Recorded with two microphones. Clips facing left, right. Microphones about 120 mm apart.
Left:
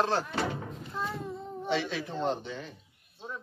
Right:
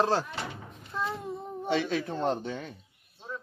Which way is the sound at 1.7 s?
50° right (ahead or behind).